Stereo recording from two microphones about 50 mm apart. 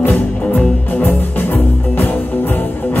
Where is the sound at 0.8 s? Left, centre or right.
Left.